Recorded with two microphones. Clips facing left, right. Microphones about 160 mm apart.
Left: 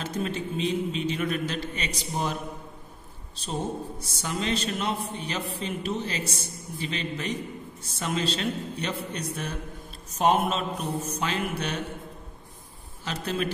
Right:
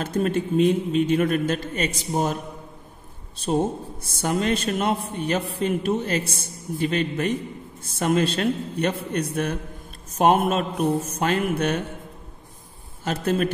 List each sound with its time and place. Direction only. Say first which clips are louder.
0.0 s a man's voice: right 7 dB; 50° right (ahead or behind)
4.0 s a man's voice: right 10 dB; 55° right (ahead or behind)
13.0 s a man's voice: right 7 dB; 50° right (ahead or behind)